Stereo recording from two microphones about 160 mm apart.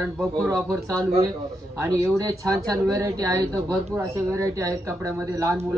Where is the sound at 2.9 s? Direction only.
20° right (ahead or behind).